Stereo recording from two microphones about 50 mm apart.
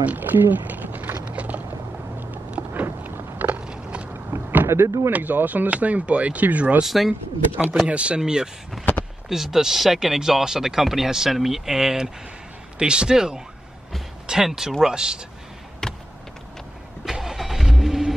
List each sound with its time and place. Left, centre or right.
0.0 s a sound: right
2.7 s a sound: right
3.6 s a sound: right
4.1 s vehicle: right
4.6 s speech: right
5.1 s speech: right
6.8 s speech: centre
7.9 s speech: right
8.8 s speech: centre
15.8 s vehicle: centre
17.0 s vehicle: centre